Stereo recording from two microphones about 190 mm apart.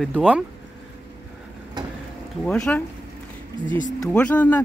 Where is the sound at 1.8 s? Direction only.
20° right (ahead or behind).